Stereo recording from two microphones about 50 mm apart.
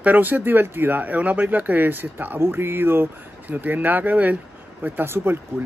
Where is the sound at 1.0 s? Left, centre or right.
Right.